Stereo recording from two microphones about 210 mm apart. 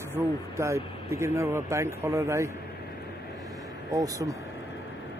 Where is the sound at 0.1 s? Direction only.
15° right (ahead or behind).